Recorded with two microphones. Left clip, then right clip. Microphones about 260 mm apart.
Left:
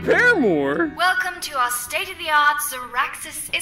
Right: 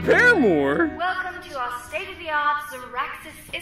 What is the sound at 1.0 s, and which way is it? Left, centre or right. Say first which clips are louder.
A woman's voice: left 6 dB; left.